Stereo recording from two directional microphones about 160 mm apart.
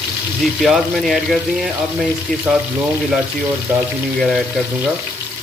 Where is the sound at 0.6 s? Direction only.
Centre (ahead or behind).